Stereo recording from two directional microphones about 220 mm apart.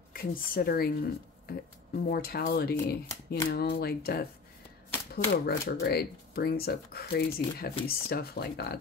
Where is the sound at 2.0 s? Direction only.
45° left (ahead or behind).